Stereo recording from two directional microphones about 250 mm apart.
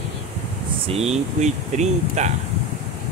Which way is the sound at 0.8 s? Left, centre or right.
Right.